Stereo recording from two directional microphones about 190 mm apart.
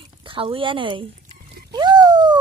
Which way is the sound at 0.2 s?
25° right (ahead or behind).